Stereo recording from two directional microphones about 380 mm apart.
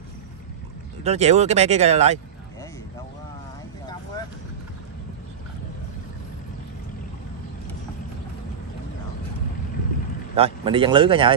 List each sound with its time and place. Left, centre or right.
1.0 s speech: centre
10.3 s speech: centre